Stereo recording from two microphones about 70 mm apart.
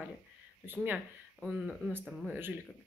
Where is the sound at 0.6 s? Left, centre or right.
Right.